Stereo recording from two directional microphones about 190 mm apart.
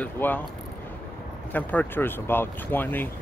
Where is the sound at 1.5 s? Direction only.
10° left (ahead or behind).